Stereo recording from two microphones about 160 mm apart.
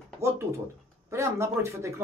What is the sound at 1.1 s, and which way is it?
Speech, 15° right (ahead or behind).